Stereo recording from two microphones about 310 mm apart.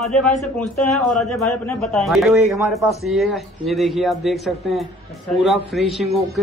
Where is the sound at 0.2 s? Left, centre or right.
Centre.